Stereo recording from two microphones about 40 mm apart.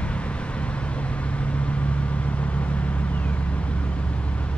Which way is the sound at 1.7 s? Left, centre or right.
Left.